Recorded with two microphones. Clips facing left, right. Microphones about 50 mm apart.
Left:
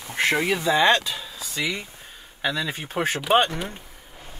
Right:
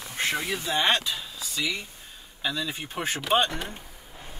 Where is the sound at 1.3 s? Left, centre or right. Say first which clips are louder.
Left 4 dB; left.